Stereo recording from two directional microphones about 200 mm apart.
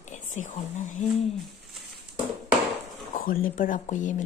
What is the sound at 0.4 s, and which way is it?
Speech, 40° left (ahead or behind).